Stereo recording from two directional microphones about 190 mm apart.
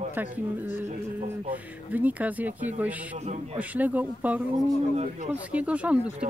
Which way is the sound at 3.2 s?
35° right (ahead or behind).